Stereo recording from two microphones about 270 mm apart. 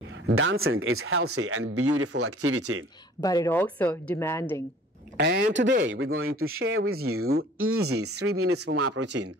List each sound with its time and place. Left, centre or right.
0.3 s speech: right
3.2 s a woman's voice: centre
5.1 s speech: right
5.9 s speech: right